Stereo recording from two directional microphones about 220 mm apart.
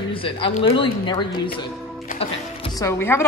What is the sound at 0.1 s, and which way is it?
Speech, 25° left (ahead or behind).